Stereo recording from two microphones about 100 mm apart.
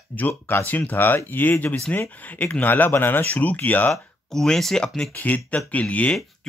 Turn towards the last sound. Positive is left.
turn(degrees=10)  # may be behind; listen again after turning